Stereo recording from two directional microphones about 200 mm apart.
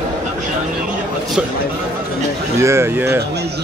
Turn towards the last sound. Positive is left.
turn(degrees=-10)  # may be behind; listen again after turning